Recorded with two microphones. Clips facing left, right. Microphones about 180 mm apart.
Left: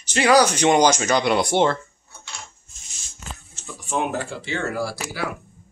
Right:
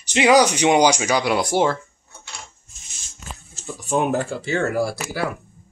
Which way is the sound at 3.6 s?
40° right (ahead or behind).